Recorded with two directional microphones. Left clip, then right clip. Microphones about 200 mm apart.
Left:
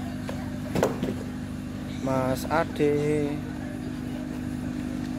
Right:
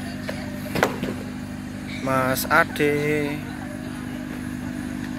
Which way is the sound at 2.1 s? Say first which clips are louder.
Right 6 dB; centre (ahead or behind).